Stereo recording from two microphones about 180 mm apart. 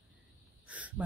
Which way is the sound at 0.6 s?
10° right (ahead or behind).